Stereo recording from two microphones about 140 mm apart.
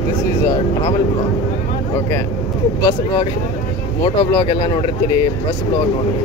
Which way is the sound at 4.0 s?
35° left (ahead or behind).